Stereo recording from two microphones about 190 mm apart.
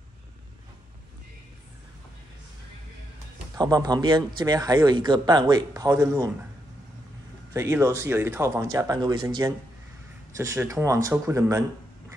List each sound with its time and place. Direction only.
3.5 s speech: 20° right (ahead or behind)
7.5 s speech: 15° right (ahead or behind)